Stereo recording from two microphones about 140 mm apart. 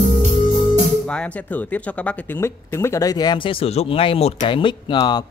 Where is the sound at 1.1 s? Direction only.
10° left (ahead or behind).